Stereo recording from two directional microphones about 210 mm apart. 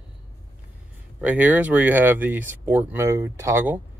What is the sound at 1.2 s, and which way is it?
Speech, 5° right (ahead or behind).